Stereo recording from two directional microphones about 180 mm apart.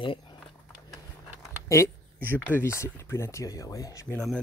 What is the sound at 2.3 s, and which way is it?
Speech, 10° left (ahead or behind).